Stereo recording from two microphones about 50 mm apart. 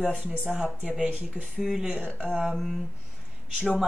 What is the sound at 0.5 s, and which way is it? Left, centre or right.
Speech, centre.